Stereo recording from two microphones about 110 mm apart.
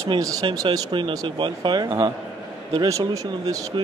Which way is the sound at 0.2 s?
30° right (ahead or behind).